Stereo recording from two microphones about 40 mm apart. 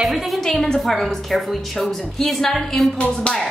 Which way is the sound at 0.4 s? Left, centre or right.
Centre.